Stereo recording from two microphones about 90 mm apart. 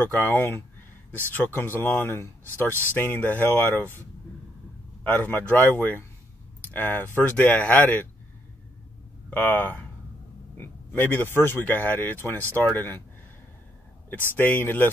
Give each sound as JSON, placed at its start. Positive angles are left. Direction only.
{"t": 0.0, "sound": "speech", "side_deg": 25}
{"t": 5.0, "sound": "speech", "side_deg": 20}
{"t": 9.3, "sound": "speech", "side_deg": 20}
{"t": 14.3, "sound": "speech", "side_deg": 20}